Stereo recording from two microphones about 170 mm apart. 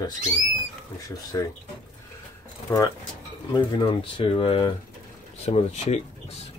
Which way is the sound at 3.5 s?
30° left (ahead or behind).